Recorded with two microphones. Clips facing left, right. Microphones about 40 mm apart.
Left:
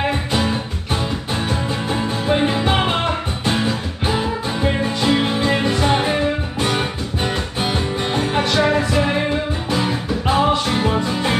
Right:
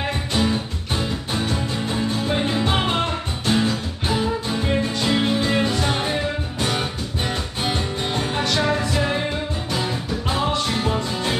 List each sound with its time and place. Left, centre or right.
0.0 s music: centre